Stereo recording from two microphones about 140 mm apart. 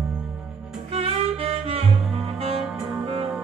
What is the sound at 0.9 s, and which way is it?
Violin, 45° right (ahead or behind).